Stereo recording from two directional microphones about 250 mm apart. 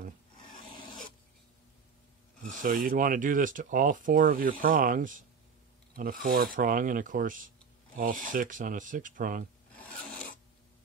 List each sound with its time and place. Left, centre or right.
2.6 s speech: right
6.2 s speech: right
9.8 s filing: centre